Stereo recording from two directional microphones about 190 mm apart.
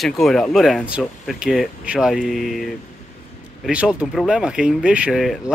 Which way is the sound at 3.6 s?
5° right (ahead or behind).